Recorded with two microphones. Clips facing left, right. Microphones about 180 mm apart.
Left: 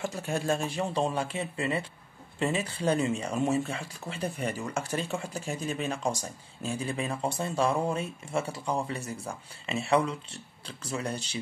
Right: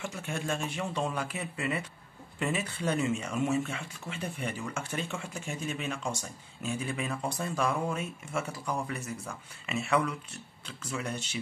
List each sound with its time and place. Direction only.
0.0 s speech: 35° left (ahead or behind)